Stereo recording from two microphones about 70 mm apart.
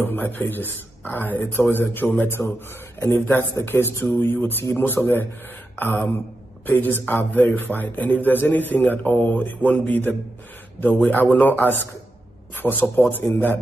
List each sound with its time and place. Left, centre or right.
0.0 s a man's voice: left